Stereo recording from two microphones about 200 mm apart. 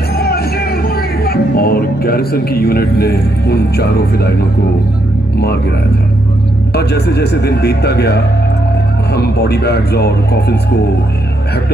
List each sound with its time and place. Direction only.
0.2 s speech: 50° left (ahead or behind)
6.7 s a man's voice: 55° left (ahead or behind)